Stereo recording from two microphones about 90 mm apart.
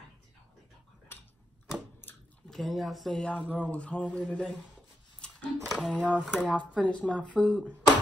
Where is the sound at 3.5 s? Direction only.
15° left (ahead or behind).